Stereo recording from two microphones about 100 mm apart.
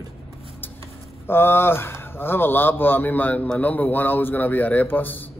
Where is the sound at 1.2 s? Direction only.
25° left (ahead or behind).